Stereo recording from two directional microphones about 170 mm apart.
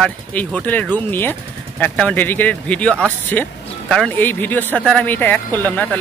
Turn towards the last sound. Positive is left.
turn(degrees=10)  # may be behind; listen again after turning